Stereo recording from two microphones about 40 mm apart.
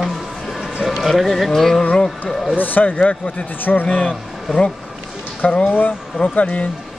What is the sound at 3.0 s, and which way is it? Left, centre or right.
Speech, left.